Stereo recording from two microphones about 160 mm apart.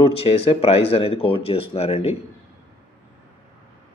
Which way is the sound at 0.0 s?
35° left (ahead or behind).